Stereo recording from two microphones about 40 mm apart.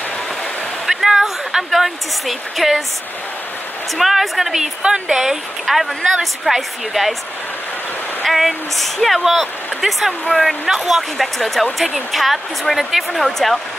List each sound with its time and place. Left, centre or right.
0.8 s speech: centre
4.0 s speech: centre
4.6 s a woman's voice: right
5.1 s speech: centre
5.7 s speech: centre
8.2 s speech: centre